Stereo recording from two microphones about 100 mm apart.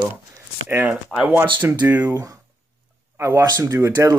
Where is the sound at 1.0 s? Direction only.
10° right (ahead or behind).